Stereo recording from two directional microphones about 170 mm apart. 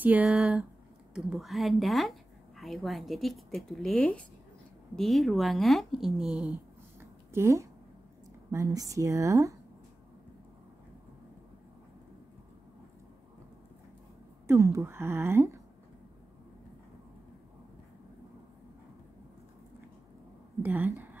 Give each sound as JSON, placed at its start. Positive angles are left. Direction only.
{"t": 0.0, "sound": "a woman's voice", "side_deg": -10}
{"t": 7.0, "sound": "a sound", "side_deg": -15}
{"t": 8.5, "sound": "a woman's voice", "side_deg": -20}
{"t": 14.5, "sound": "a woman's voice", "side_deg": -15}
{"t": 20.6, "sound": "speech", "side_deg": -10}